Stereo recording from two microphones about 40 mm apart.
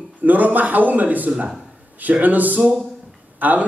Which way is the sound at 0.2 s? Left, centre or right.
Right.